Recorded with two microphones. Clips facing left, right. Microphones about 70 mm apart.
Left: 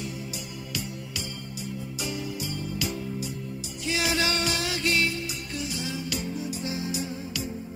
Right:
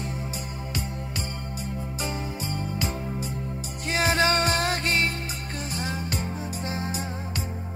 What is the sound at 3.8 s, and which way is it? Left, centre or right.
Music, right.